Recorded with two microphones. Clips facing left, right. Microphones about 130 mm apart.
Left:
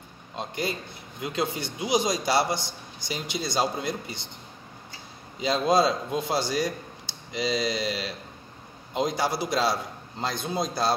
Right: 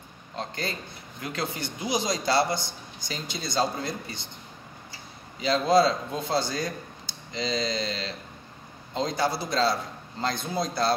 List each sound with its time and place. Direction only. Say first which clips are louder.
0.4 s a man's voice: left 2 dB; 15° left (ahead or behind)
5.4 s a man's voice: right 1 dB; 15° left (ahead or behind)